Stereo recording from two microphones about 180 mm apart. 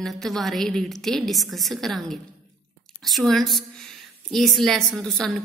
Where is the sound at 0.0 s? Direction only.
Centre (ahead or behind).